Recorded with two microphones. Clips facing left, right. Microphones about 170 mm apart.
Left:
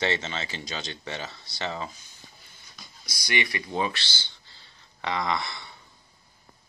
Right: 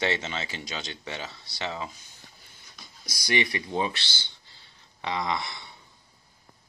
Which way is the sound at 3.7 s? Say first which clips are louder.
Even; 20° right (ahead or behind).